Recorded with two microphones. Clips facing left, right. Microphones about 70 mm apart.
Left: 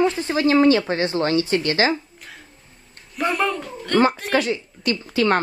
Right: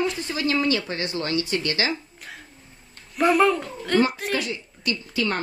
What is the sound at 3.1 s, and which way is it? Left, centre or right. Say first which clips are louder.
Speech: right 4 dB; centre.